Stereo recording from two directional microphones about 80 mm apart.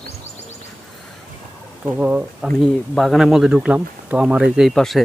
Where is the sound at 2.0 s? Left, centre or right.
Centre.